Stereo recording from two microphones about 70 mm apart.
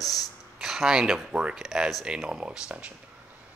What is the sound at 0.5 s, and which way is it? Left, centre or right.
Speech, centre.